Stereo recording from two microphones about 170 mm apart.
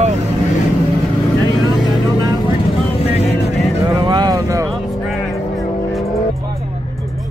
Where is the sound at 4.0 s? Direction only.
25° right (ahead or behind).